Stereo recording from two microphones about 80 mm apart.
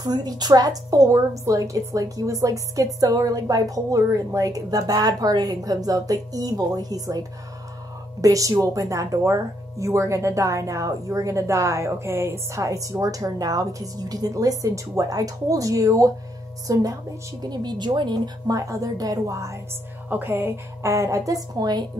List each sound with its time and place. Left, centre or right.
0.0 s speech: right
17.4 s speech: right
20.1 s a woman's voice: right